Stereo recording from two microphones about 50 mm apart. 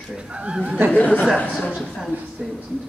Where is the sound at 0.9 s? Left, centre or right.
Left.